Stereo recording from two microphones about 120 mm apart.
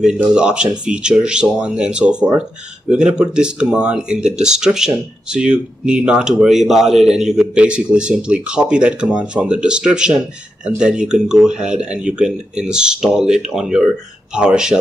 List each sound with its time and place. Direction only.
0.0 s speech: 5° right (ahead or behind)